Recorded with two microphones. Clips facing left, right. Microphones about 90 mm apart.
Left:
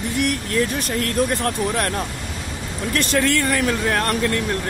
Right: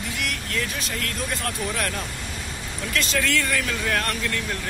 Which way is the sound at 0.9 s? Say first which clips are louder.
Left 11 dB; 40° left (ahead or behind).